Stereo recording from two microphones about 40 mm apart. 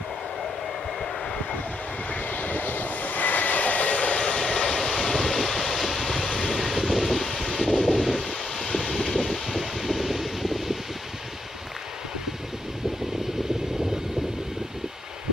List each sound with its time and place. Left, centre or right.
2.0 s vehicle: left
4.2 s vehicle: left
4.7 s vehicle: centre